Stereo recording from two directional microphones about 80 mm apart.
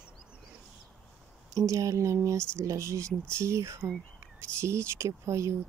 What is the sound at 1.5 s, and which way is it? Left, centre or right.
Speech, right.